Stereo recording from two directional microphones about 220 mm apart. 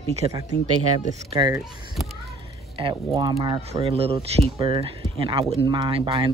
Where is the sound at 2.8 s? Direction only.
20° right (ahead or behind).